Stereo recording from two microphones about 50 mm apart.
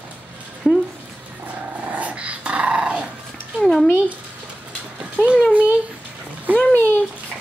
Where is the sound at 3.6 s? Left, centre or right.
Centre.